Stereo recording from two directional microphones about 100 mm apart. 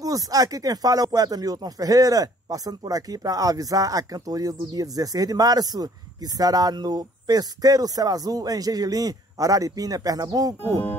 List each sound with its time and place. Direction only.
0.0 s speech: 35° right (ahead or behind)